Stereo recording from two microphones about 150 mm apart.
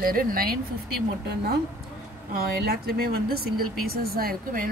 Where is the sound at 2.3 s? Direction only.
90° right.